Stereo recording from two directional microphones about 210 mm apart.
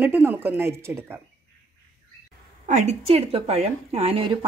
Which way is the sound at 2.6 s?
35° right (ahead or behind).